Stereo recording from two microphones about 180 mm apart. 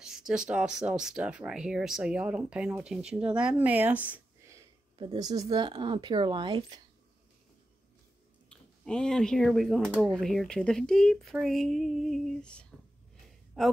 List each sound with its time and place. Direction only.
0.0 s speech: 5° right (ahead or behind)
4.9 s speech: 25° right (ahead or behind)
8.5 s speech: 5° left (ahead or behind)